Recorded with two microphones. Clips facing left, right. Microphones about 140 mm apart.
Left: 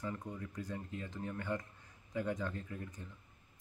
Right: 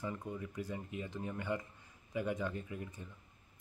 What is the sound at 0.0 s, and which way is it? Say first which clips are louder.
Speech: right 1 dB; 10° right (ahead or behind).